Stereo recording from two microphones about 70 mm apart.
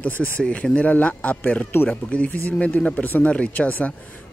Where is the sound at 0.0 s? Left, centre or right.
Left.